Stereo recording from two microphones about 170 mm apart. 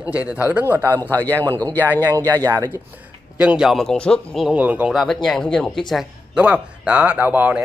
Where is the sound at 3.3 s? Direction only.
5° right (ahead or behind).